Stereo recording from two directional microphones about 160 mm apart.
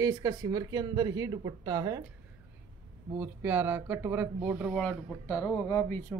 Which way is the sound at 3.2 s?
10° right (ahead or behind).